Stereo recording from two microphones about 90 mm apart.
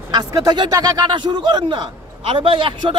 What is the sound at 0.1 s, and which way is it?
A man's voice, 50° right (ahead or behind).